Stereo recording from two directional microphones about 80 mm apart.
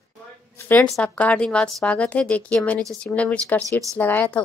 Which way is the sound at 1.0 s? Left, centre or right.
Centre.